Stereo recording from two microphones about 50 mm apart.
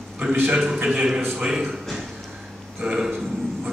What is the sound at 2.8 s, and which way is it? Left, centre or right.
Speech, right.